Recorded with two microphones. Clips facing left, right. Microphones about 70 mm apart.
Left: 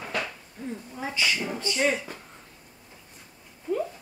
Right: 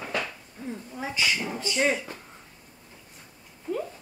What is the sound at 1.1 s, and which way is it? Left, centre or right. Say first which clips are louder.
Speech: even; right.